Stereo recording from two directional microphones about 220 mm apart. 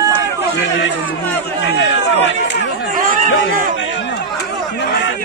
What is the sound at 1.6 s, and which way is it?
Speech, 55° left (ahead or behind).